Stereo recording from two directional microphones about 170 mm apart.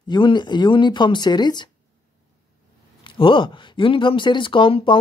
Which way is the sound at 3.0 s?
30° left (ahead or behind).